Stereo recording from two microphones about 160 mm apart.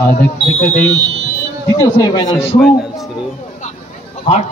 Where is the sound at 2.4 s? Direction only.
Centre (ahead or behind).